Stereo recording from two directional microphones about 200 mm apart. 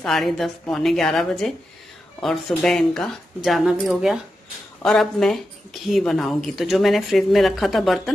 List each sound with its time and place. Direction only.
0.0 s speech: centre (ahead or behind)